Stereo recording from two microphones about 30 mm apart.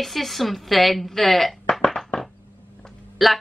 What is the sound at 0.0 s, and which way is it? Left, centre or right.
A woman's voice, centre.